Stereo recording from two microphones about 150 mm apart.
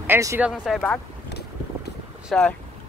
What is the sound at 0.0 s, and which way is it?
Speech, 15° right (ahead or behind).